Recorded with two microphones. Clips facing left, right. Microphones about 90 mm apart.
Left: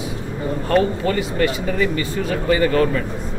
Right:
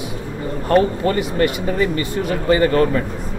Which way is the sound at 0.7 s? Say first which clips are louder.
Right 3 dB; 30° right (ahead or behind).